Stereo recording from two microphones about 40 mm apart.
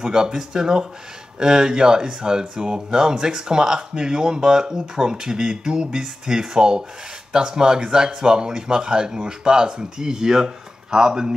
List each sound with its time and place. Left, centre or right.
0.0 s speech: centre